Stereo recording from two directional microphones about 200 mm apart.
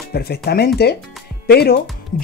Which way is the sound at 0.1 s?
55° left (ahead or behind).